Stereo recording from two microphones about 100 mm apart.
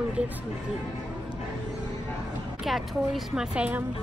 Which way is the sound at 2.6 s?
Centre (ahead or behind).